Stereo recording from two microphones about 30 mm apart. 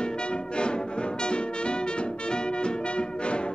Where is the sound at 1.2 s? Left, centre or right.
Left.